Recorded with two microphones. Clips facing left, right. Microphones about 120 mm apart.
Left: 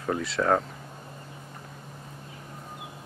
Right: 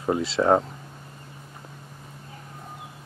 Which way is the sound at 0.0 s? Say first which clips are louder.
Right 4 dB; 20° right (ahead or behind).